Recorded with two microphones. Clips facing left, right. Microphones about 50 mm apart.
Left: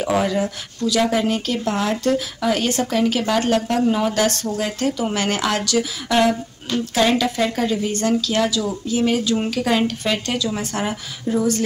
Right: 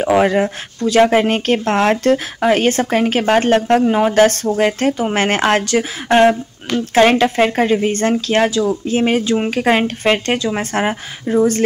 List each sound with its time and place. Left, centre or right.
0.0 s speech: right